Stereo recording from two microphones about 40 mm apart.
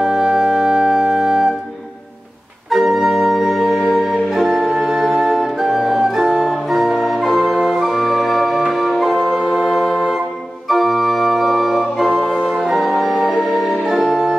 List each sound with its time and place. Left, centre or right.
0.0 s music: centre
2.7 s organ: centre
3.9 s music: centre
4.3 s music: centre
10.7 s organ: centre
13.8 s music: centre